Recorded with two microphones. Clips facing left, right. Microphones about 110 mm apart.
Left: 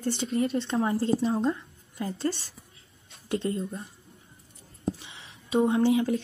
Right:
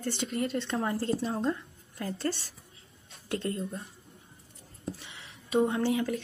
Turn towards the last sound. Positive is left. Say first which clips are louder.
# left 5 dB
turn(degrees=25)  # may be behind; listen again after turning